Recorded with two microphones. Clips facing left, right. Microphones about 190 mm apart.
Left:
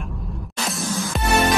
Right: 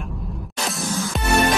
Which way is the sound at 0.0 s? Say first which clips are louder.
Right 1 dB; centre (ahead or behind).